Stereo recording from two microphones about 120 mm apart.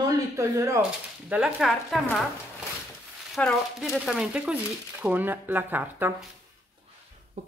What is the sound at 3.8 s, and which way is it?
Speech, 5° right (ahead or behind).